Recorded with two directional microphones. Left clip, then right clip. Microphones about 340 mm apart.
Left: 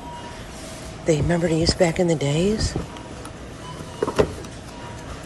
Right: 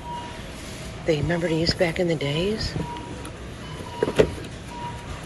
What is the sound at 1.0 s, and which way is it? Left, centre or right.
Speech, centre.